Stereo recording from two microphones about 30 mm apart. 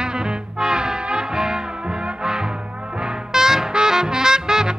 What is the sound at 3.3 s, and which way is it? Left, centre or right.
Music, centre.